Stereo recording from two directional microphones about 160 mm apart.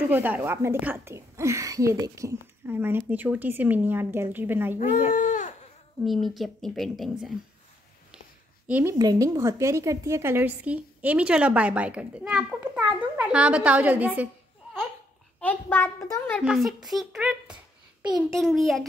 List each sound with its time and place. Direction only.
0.1 s a woman's voice: 10° right (ahead or behind)
5.1 s speech: 55° left (ahead or behind)
6.0 s a woman's voice: centre (ahead or behind)
8.6 s a woman's voice: 10° right (ahead or behind)
8.9 s a woman's voice: 20° right (ahead or behind)
15.4 s a child's voice: 15° left (ahead or behind)
16.3 s a woman's voice: centre (ahead or behind)